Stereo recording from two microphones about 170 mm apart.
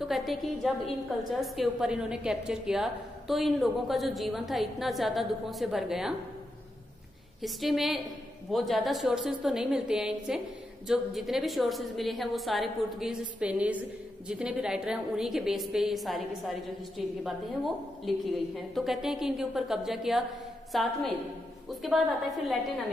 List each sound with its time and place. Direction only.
0.0 s a woman's voice: centre (ahead or behind)
7.4 s a woman's voice: centre (ahead or behind)